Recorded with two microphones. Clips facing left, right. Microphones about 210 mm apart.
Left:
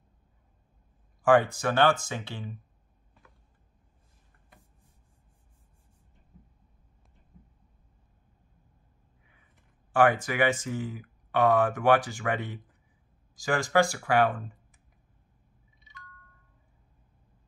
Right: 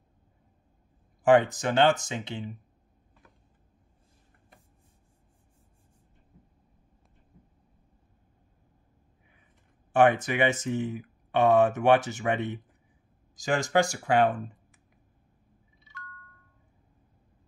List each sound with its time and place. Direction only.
1.2 s speech: 20° right (ahead or behind)
9.9 s speech: 20° right (ahead or behind)